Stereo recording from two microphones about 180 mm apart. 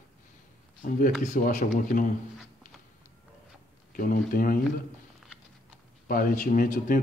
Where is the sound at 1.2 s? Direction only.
45° left (ahead or behind).